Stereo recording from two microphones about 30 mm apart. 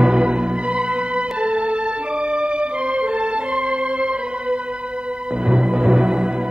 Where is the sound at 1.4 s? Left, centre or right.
Right.